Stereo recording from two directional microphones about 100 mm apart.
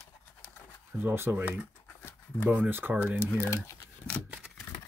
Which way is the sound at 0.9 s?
20° right (ahead or behind).